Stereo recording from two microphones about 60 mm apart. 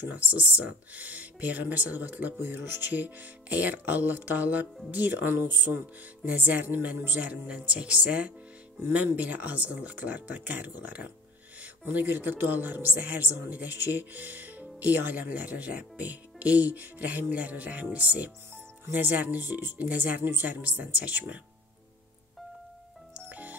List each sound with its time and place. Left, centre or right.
0.1 s a woman's voice: right
23.1 s music: right